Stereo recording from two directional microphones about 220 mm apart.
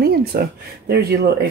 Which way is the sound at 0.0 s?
45° right (ahead or behind).